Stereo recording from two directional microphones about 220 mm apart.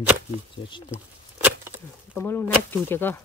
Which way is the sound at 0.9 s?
5° right (ahead or behind).